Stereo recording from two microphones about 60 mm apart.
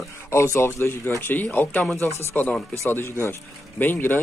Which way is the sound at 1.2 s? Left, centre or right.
Left.